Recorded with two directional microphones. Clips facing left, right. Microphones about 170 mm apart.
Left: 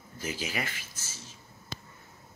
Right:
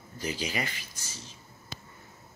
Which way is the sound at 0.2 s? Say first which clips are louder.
Right 2 dB; 5° left (ahead or behind).